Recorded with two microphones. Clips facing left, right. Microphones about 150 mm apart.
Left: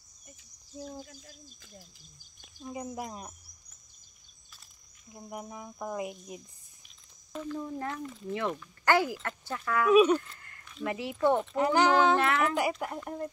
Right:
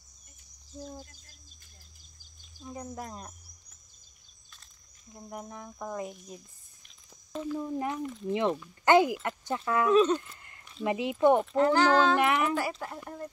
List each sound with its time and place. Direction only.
0.7 s speech: 5° left (ahead or behind)
2.6 s speech: 10° left (ahead or behind)
5.1 s speech: 5° left (ahead or behind)
7.4 s speech: 15° right (ahead or behind)
10.1 s a sound: 20° right (ahead or behind)
10.7 s speech: 20° right (ahead or behind)
11.5 s speech: 15° left (ahead or behind)
12.2 s speech: 20° right (ahead or behind)
12.5 s speech: 15° left (ahead or behind)